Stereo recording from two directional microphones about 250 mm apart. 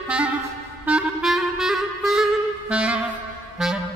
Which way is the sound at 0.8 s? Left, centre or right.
Centre.